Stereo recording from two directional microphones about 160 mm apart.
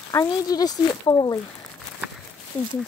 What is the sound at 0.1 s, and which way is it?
Speech, 20° left (ahead or behind).